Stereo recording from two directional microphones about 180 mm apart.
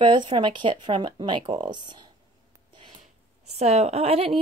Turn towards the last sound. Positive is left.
turn(degrees=-35)  # may be behind; listen again after turning